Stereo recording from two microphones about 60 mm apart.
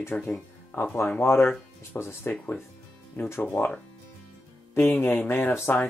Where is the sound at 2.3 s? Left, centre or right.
Left.